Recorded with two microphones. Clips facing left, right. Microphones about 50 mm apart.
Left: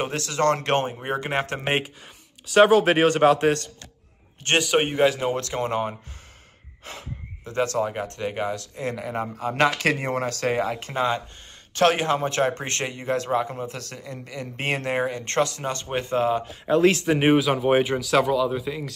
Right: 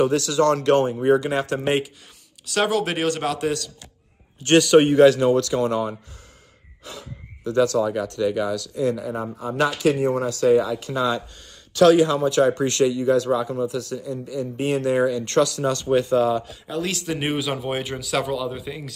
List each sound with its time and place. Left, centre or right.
0.0 s speech: left
2.4 s a man's voice: centre; by 3.7 s left
4.6 s a man's voice: centre
5.3 s a man's voice: left
8.9 s speech: left
17.4 s speech: centre
17.6 s a man's voice: centre
17.9 s speech: centre